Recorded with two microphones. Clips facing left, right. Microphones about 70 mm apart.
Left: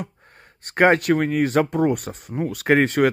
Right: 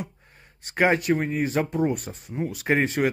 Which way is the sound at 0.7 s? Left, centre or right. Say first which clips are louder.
Left 5 dB; left.